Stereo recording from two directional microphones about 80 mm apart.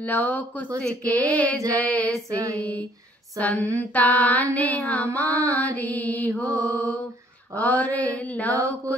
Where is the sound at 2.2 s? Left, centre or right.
Right.